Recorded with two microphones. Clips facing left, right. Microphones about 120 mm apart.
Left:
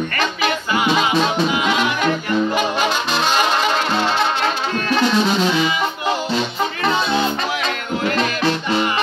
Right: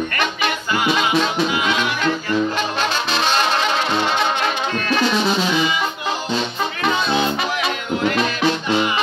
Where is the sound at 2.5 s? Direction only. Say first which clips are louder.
Left 3 dB; 10° left (ahead or behind).